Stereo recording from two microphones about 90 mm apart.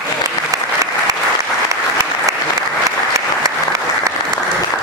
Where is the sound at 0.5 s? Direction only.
40° right (ahead or behind).